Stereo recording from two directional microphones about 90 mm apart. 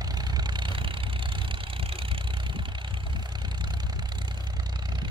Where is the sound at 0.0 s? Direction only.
50° right (ahead or behind); by 2.6 s 70° right (ahead or behind).